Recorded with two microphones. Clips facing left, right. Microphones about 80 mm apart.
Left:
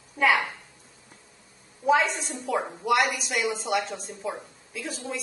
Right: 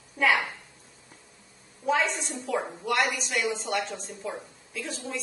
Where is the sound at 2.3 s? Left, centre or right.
Centre.